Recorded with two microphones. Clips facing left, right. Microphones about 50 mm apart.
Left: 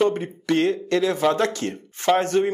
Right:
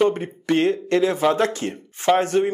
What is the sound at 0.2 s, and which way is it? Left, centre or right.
Speech, right.